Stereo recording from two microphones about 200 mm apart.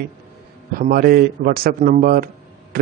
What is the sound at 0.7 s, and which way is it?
Speech, 50° right (ahead or behind).